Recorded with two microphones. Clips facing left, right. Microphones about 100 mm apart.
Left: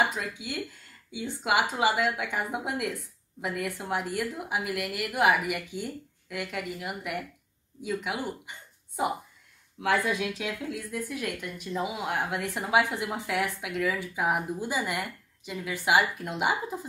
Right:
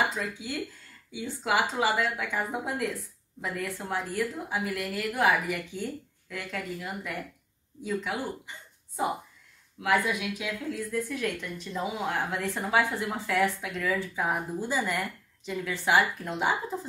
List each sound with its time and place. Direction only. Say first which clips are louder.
0.0 s speech: left 1 dB; 20° left (ahead or behind)
9.8 s speech: even; 25° left (ahead or behind)